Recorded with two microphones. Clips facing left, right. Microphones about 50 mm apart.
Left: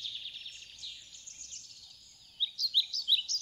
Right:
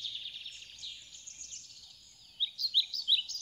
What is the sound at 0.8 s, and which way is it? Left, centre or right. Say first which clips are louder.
Bird: even; right.